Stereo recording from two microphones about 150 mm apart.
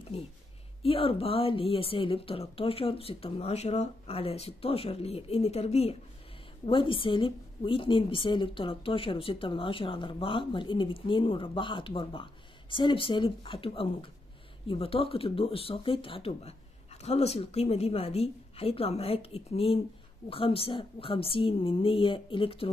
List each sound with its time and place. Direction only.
0.8 s a woman's voice: 40° left (ahead or behind)